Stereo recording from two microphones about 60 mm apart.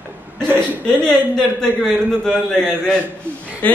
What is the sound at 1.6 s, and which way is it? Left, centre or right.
A man's voice, centre.